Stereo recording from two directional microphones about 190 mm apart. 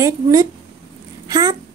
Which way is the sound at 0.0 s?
20° right (ahead or behind).